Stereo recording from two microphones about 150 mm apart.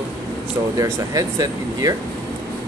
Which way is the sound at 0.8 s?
25° right (ahead or behind).